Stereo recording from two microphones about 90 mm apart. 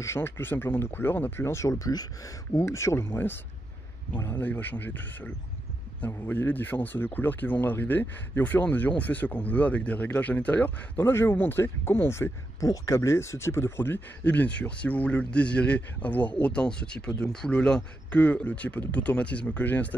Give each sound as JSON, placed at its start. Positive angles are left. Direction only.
{"t": 0.0, "sound": "speech", "side_deg": 25}
{"t": 2.5, "sound": "speech", "side_deg": 35}